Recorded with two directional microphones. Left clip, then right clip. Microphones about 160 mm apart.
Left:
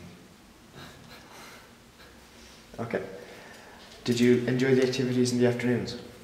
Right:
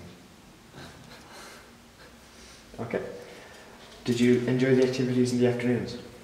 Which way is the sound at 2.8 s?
25° left (ahead or behind).